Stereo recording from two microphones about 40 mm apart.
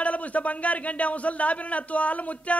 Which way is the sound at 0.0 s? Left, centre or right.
Left.